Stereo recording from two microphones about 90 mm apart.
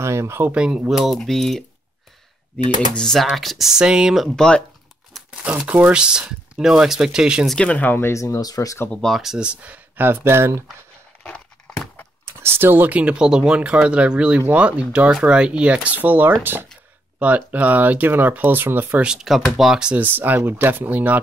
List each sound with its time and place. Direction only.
0.0 s speech: 30° right (ahead or behind)
0.5 s speech: 10° right (ahead or behind)
4.4 s speech: 10° left (ahead or behind)
5.4 s speech: 15° right (ahead or behind)
7.4 s speech: 10° left (ahead or behind); by 8.7 s 40° left (ahead or behind)
8.9 s speech: 5° left (ahead or behind); by 10.6 s 30° right (ahead or behind)
11.2 s a sound: 15° left (ahead or behind)
12.3 s speech: 25° right (ahead or behind)
19.0 s speech: 5° right (ahead or behind)